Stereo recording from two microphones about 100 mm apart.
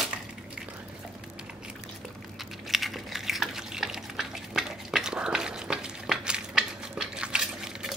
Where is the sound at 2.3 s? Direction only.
Centre (ahead or behind).